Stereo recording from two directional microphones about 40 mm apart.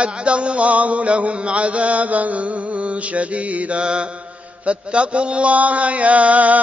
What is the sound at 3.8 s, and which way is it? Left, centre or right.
Mantra, right.